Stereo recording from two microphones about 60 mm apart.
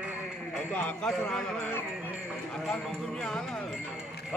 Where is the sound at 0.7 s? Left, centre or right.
Left.